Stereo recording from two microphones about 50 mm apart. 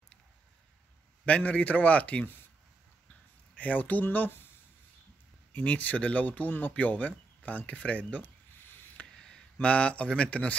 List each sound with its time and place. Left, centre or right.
1.2 s a man's voice: left
3.5 s speech: left
5.6 s speech: left
6.8 s a sound: left
9.0 s a sound: centre
10.0 s a man's voice: left